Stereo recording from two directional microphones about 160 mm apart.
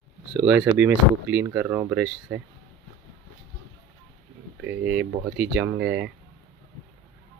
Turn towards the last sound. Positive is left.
turn(degrees=-90)